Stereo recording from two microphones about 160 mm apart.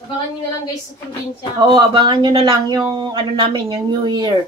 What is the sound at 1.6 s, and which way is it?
Speech, 30° right (ahead or behind).